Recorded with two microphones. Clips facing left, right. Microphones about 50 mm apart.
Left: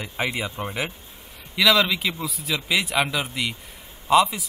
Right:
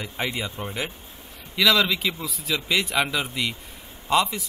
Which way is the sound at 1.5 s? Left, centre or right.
Centre.